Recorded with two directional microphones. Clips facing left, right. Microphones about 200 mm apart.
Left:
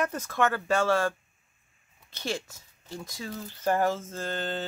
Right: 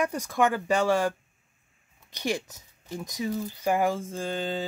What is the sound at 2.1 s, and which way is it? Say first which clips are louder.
Speech: right 4 dB; 15° right (ahead or behind).